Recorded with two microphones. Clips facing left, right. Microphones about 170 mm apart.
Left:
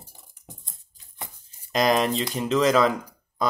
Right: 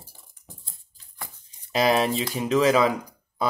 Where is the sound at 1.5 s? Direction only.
5° right (ahead or behind).